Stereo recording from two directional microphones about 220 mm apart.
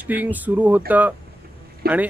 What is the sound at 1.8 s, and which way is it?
Speech, 45° right (ahead or behind).